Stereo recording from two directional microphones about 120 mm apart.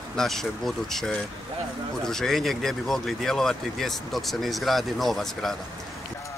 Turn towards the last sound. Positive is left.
turn(degrees=5)  # may be behind; listen again after turning